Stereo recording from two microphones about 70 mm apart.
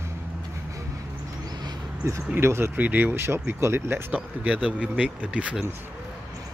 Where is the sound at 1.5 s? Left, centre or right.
Right.